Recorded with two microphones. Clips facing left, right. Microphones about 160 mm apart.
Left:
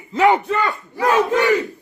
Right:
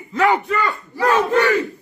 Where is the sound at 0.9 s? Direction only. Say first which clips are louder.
Even; 15° left (ahead or behind).